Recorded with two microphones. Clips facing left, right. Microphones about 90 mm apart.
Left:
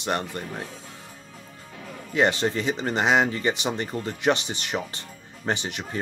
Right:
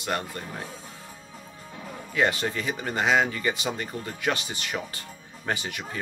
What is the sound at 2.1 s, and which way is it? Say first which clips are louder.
Speech: left 3 dB; 20° left (ahead or behind).